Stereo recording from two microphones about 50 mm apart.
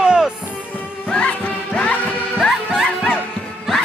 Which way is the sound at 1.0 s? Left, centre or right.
Left.